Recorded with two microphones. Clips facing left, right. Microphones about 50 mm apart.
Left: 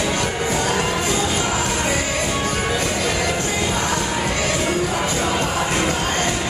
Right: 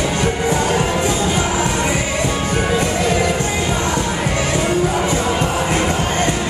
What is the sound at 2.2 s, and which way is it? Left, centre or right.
Music, centre.